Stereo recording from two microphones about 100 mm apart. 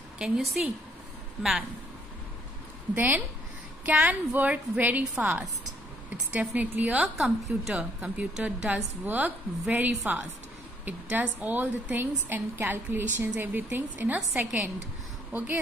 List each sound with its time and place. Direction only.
0.2 s a woman's voice: centre (ahead or behind)
2.9 s a woman's voice: 20° right (ahead or behind)
6.5 s a woman's voice: 15° right (ahead or behind)